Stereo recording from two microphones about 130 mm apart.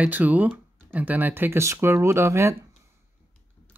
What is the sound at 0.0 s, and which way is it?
Speech, 10° right (ahead or behind).